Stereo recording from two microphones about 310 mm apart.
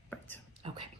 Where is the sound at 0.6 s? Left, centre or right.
Centre.